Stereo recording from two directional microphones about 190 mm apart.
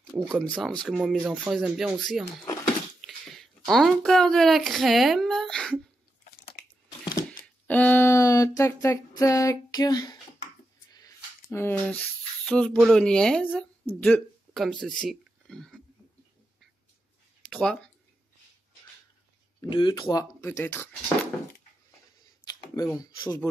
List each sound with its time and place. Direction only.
0.3 s speech: centre (ahead or behind)
7.6 s speech: 10° left (ahead or behind)
10.9 s a sound: 20° left (ahead or behind)
12.4 s speech: 5° left (ahead or behind)
17.5 s speech: 5° left (ahead or behind)
19.7 s speech: 25° left (ahead or behind)
22.5 s speech: 20° left (ahead or behind)